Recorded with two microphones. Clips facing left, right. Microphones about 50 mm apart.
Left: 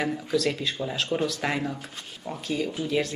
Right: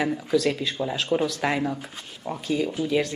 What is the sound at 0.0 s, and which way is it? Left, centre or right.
Speech, centre.